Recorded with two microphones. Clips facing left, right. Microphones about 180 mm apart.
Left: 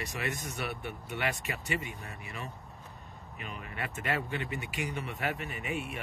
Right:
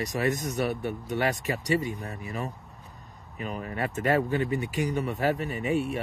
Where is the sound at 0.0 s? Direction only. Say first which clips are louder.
Right 9 dB; 40° right (ahead or behind).